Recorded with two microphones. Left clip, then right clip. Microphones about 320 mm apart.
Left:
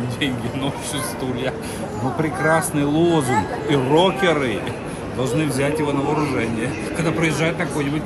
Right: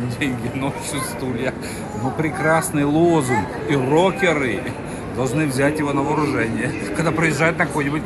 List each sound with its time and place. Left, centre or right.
2.4 s a man's voice: centre